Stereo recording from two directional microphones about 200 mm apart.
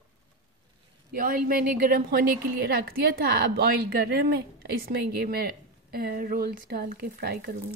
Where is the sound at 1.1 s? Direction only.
45° right (ahead or behind).